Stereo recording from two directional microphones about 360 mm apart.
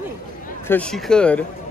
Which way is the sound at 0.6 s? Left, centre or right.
Centre.